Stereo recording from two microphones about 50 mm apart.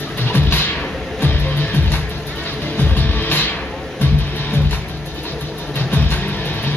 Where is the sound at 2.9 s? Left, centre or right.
Left.